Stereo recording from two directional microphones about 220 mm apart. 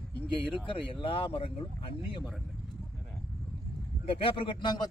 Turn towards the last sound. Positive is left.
turn(degrees=20)  # may be behind; listen again after turning